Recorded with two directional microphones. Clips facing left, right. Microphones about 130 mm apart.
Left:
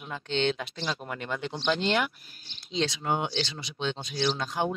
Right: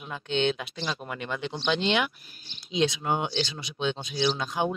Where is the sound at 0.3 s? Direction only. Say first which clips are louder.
Right 1 dB; 10° right (ahead or behind).